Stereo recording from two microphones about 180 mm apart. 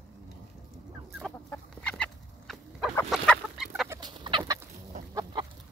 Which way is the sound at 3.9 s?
25° right (ahead or behind).